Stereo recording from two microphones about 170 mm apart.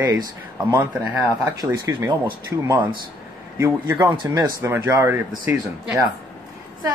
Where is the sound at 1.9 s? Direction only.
20° right (ahead or behind).